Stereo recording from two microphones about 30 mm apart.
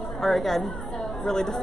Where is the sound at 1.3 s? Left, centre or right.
Centre.